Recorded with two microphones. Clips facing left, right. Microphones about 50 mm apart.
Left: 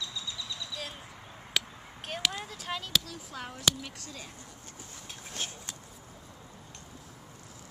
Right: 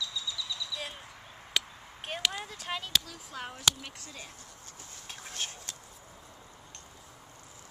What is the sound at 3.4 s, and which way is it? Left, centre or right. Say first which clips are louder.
Speech: even; centre.